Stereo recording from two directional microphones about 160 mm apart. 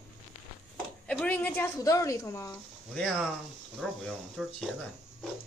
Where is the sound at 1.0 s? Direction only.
10° left (ahead or behind).